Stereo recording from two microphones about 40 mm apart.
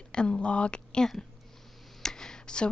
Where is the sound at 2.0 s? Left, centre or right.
Centre.